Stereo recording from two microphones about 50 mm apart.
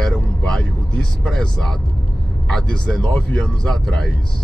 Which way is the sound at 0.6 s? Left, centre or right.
Left.